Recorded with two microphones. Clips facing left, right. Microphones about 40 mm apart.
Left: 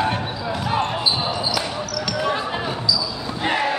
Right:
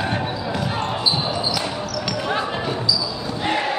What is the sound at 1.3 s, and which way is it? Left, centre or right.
Basketball bounce, centre.